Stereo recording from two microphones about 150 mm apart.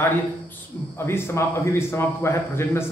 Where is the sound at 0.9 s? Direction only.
15° left (ahead or behind).